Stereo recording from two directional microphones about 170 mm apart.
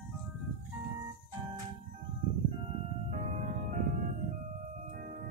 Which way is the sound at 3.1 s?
45° right (ahead or behind).